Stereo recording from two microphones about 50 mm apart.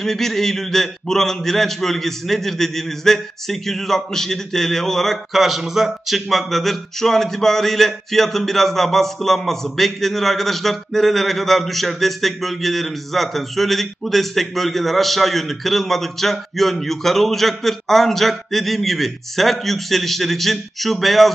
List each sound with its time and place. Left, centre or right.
0.0 s a man's voice: centre